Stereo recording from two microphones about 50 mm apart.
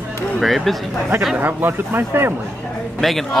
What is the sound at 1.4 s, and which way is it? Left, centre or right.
Speech, right.